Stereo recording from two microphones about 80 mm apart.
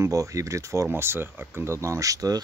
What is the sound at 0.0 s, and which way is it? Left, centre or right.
Speech, right.